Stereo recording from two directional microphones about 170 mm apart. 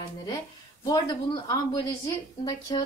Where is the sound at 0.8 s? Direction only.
25° left (ahead or behind).